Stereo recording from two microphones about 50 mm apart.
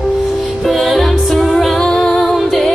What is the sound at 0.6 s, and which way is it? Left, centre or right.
Music, centre.